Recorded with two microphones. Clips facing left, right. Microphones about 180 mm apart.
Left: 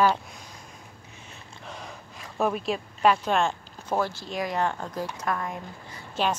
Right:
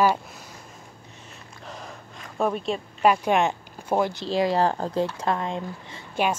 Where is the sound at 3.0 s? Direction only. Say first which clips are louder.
Right 2 dB; 10° right (ahead or behind).